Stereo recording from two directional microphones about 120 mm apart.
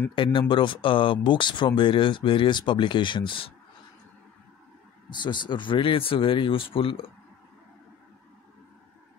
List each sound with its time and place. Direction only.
0.1 s speech: 45° left (ahead or behind)
5.2 s speech: 40° left (ahead or behind)